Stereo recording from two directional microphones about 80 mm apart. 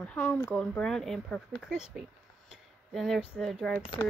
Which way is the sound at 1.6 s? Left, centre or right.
Centre.